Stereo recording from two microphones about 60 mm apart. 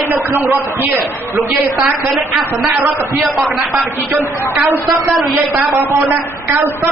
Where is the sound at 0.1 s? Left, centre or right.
Right.